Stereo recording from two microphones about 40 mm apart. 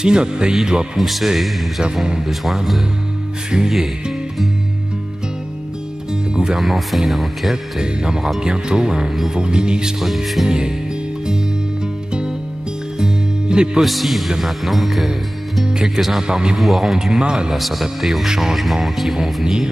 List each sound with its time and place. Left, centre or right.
0.0 s speech: right
0.9 s speech: centre
6.3 s speech: centre
6.6 s speech: centre
7.8 s speech: centre
9.9 s speech: centre
12.1 s music: right
13.7 s speech: centre
15.6 s speech: centre
16.0 s speech: centre
16.3 s speech: centre
16.5 s speech: centre
17.2 s speech: right
17.5 s speech: centre